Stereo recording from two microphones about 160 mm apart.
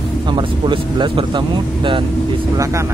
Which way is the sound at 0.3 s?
30° right (ahead or behind).